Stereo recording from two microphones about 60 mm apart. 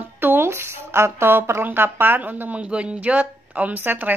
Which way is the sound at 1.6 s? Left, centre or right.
Right.